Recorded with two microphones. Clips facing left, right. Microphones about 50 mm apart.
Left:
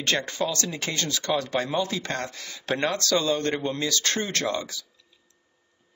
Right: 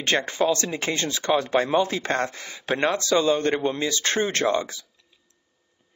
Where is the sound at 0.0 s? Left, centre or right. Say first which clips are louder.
Right 4 dB; right.